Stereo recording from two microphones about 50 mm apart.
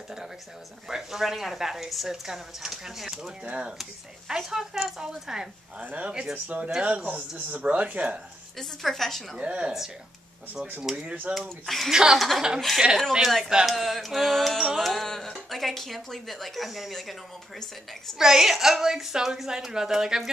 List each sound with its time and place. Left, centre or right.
0.8 s speech: centre
3.4 s speech: right
4.3 s speech: centre
5.8 s speech: right
8.5 s speech: centre
9.4 s speech: right
10.8 s speech: centre
11.3 s speech: centre
11.9 s speech: centre
12.5 s speech: centre
18.1 s speech: centre